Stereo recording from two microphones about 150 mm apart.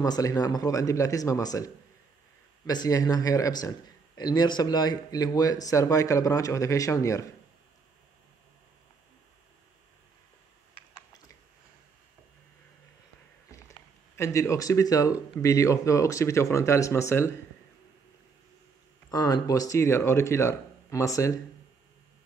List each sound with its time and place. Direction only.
0.0 s a man's voice: 25° left (ahead or behind)
13.5 s a sound: 20° left (ahead or behind)
15.4 s a man's voice: 20° left (ahead or behind)
19.0 s a man's voice: 25° left (ahead or behind)